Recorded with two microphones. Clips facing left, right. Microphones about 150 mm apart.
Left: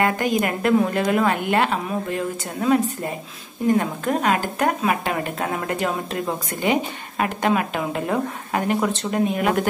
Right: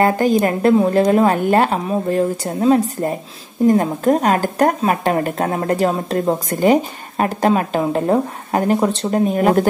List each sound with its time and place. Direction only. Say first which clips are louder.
0.0 s speech: right 6 dB; 35° right (ahead or behind)